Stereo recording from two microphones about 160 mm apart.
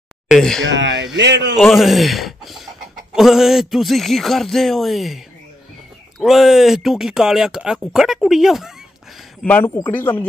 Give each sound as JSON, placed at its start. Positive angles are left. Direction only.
{"t": 0.3, "sound": "speech", "side_deg": 5}
{"t": 1.1, "sound": "a man's voice", "side_deg": -90}
{"t": 1.6, "sound": "speech", "side_deg": 0}
{"t": 9.4, "sound": "speech", "side_deg": 10}